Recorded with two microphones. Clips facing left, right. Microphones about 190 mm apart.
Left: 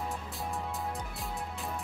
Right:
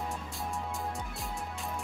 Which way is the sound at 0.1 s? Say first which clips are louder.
Even; centre (ahead or behind).